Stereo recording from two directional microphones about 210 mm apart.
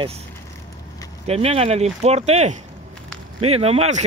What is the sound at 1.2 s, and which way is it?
Speech, 30° right (ahead or behind).